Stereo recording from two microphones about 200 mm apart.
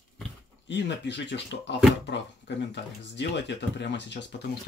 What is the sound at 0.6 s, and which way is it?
Speech, 60° left (ahead or behind).